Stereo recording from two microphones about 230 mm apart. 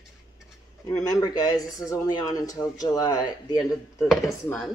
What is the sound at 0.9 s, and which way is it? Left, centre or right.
Speech, centre.